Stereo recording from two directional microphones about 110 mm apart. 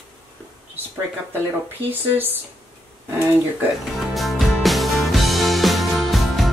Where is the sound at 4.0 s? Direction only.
Centre (ahead or behind).